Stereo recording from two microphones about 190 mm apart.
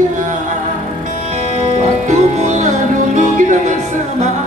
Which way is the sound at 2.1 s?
40° right (ahead or behind).